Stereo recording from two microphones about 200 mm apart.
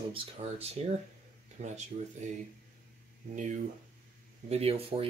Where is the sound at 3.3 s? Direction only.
40° right (ahead or behind).